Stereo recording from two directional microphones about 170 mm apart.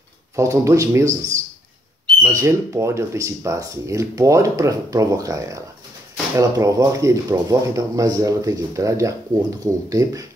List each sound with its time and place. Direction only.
0.4 s speech: 20° right (ahead or behind)